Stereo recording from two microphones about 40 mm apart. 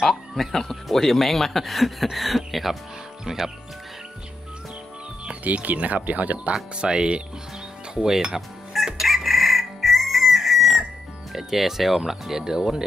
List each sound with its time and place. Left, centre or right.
0.0 s speech: centre
3.3 s speech: centre
5.4 s speech: right
6.5 s speech: right
8.7 s chicken: centre
11.3 s speech: centre